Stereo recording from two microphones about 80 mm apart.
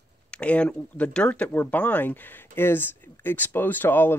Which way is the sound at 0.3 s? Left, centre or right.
Centre.